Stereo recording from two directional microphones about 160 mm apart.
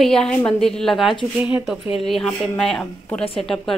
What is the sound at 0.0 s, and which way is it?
A woman's voice, 5° left (ahead or behind).